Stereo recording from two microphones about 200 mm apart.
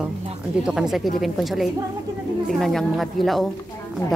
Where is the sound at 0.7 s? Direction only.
5° right (ahead or behind).